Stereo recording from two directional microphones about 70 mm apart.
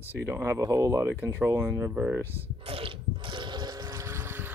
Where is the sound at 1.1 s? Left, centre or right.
Right.